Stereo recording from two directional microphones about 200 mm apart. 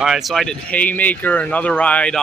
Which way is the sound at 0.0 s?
Centre (ahead or behind).